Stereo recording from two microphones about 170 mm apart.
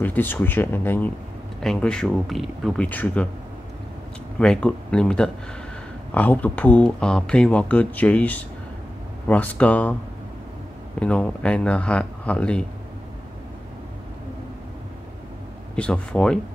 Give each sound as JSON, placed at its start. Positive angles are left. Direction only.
{"t": 0.0, "sound": "speech", "side_deg": 10}
{"t": 4.4, "sound": "speech", "side_deg": 5}
{"t": 11.0, "sound": "speech", "side_deg": 5}
{"t": 15.7, "sound": "speech", "side_deg": 5}